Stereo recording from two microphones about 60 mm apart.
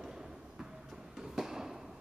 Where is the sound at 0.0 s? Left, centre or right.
Centre.